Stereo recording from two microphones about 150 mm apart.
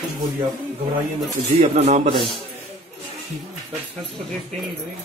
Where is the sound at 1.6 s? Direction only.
45° right (ahead or behind).